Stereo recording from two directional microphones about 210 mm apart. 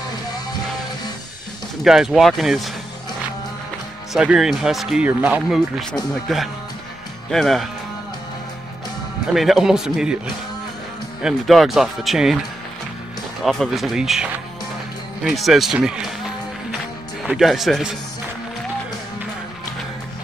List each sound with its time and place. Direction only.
1.9 s speech: centre (ahead or behind)
4.1 s speech: 5° right (ahead or behind)
9.3 s speech: centre (ahead or behind)
13.4 s speech: centre (ahead or behind)
15.2 s speech: centre (ahead or behind)
17.2 s speech: centre (ahead or behind)